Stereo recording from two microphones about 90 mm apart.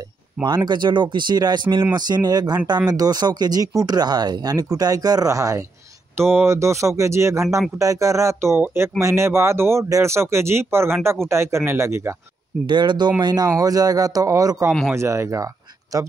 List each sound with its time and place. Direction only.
0.7 s speech: 55° right (ahead or behind)
2.0 s speech: 50° right (ahead or behind)
6.1 s speech: 30° right (ahead or behind)
12.6 s speech: 55° right (ahead or behind); by 14.7 s 35° right (ahead or behind)
14.7 s speech: centre (ahead or behind)
15.0 s speech: 30° right (ahead or behind)